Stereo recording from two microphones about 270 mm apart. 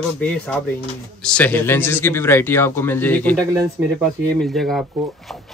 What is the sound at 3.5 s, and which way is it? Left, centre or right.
Speech, centre.